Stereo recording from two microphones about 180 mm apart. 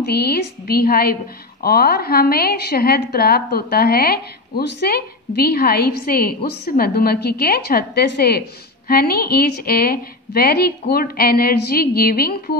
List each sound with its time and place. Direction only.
0.0 s a woman's voice: 60° left (ahead or behind)